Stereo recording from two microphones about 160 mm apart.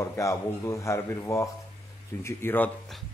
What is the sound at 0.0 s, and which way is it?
Speech, 20° left (ahead or behind).